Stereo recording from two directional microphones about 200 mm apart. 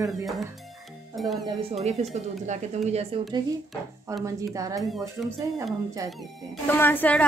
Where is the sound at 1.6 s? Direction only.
30° right (ahead or behind).